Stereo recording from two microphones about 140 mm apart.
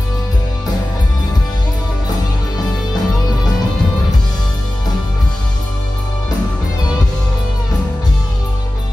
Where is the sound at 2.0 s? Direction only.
30° left (ahead or behind).